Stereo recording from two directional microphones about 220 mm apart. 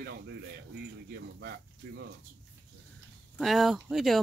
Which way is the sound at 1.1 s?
50° right (ahead or behind).